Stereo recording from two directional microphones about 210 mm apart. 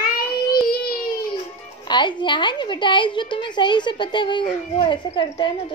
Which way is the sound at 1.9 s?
20° left (ahead or behind).